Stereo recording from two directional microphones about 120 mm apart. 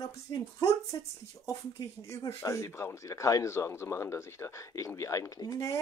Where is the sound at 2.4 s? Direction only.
25° left (ahead or behind).